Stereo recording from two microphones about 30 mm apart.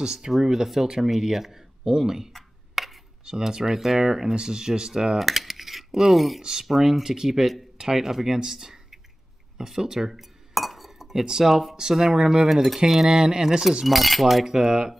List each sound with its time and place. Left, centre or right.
0.0 s speech: right
1.1 s speech: centre
2.8 s a sound: centre
3.3 s speech: right
5.2 s cutlery: centre
6.6 s speech: centre
10.5 s chink: centre
11.2 s speech: centre
13.8 s cutlery: centre
14.2 s speech: centre